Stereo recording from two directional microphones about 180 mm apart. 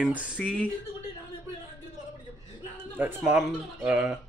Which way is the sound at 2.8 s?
10° right (ahead or behind).